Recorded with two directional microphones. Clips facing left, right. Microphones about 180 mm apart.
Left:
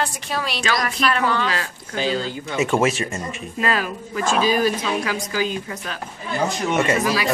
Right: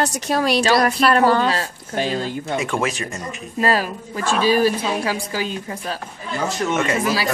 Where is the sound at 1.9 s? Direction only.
55° right (ahead or behind).